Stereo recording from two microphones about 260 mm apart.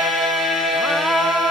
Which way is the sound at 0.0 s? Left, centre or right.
Centre.